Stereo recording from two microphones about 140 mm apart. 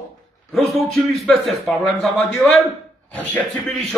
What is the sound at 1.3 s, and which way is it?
A man's voice, centre (ahead or behind).